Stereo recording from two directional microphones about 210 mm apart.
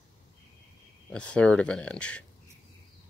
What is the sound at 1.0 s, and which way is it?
Speech, 5° left (ahead or behind).